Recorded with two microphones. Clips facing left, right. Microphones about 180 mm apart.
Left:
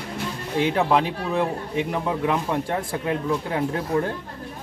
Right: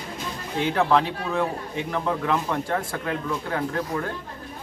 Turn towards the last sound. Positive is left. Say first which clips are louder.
# left 4 dB
turn(degrees=25)  # may be behind; listen again after turning